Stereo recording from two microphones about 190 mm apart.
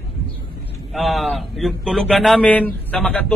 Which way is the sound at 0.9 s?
Centre (ahead or behind).